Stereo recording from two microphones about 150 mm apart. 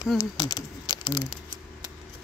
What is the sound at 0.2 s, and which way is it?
Speech, 25° left (ahead or behind).